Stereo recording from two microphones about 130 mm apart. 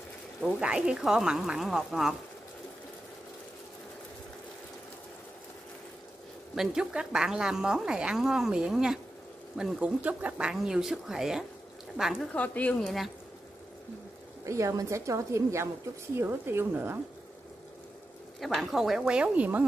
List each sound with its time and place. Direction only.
0.6 s a woman's voice: 5° right (ahead or behind)
6.5 s a woman's voice: 5° right (ahead or behind)
12.3 s speech: 10° left (ahead or behind)
14.4 s a woman's voice: 25° right (ahead or behind)
18.4 s a woman's voice: centre (ahead or behind)